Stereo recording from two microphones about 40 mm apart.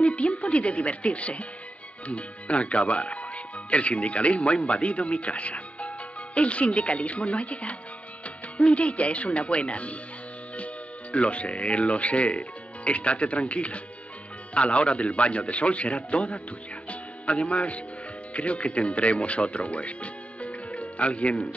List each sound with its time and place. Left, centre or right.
0.0 s speech: left